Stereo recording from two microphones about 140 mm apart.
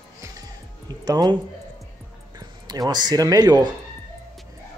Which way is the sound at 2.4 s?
25° right (ahead or behind).